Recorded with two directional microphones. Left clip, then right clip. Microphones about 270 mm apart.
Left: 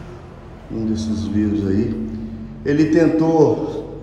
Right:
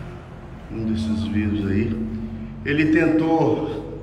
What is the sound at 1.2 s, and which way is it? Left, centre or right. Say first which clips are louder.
Speech: left 7 dB; centre.